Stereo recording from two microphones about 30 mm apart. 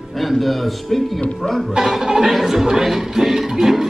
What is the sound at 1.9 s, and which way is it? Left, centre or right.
Speech, centre.